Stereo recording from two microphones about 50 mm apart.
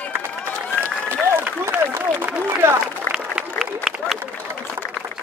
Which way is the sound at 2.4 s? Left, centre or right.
Right.